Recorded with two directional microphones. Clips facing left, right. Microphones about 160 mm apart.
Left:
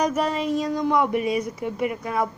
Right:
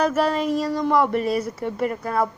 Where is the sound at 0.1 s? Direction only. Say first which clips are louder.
Right 2 dB; 5° right (ahead or behind).